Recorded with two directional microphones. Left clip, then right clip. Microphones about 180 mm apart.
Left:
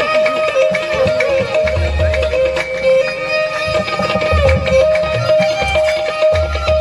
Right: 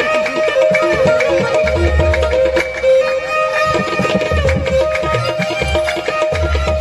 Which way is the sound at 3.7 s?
40° right (ahead or behind).